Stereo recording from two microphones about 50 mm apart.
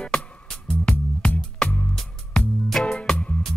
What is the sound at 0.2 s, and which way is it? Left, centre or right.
Music, left.